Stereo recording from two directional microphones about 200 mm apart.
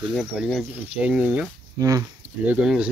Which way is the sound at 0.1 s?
Centre (ahead or behind).